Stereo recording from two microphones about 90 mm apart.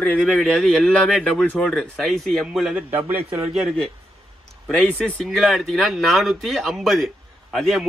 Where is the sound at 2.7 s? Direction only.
20° right (ahead or behind).